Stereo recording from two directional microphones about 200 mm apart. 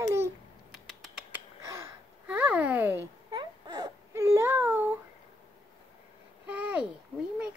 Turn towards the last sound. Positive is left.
turn(degrees=-5)  # may be behind; listen again after turning